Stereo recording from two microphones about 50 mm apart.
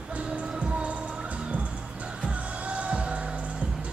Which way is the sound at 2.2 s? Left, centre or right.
Right.